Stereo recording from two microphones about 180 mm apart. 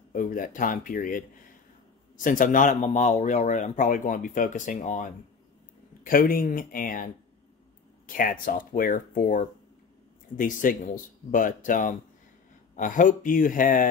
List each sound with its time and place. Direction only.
0.1 s speech: 50° left (ahead or behind)
8.1 s speech: 50° left (ahead or behind)